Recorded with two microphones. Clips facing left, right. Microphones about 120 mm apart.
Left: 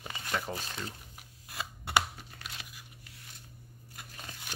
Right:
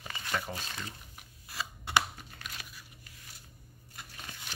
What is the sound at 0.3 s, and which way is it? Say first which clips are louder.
Speech: even; 10° left (ahead or behind).